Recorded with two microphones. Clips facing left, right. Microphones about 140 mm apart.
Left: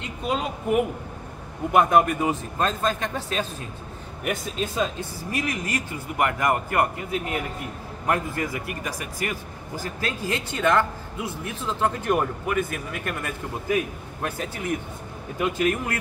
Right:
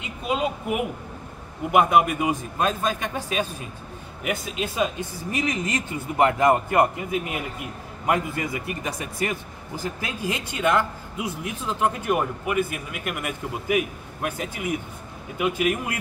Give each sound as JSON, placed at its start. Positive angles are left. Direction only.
{"t": 0.0, "sound": "a woman's voice", "side_deg": -5}
{"t": 5.3, "sound": "a man's voice", "side_deg": -20}